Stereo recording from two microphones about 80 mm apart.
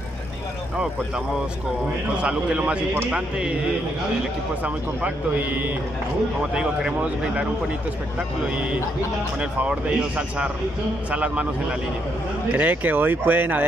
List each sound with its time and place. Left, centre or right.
2.2 s speech: centre
4.6 s speech: centre
6.5 s speech: centre
12.4 s speech: right